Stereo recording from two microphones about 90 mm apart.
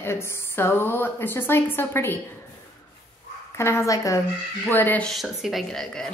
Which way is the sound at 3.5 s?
30° left (ahead or behind).